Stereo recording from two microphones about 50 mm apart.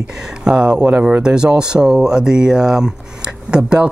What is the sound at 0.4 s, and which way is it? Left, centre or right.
Speech, centre.